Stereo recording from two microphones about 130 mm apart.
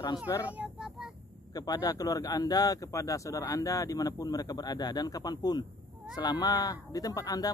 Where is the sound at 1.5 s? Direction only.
30° left (ahead or behind).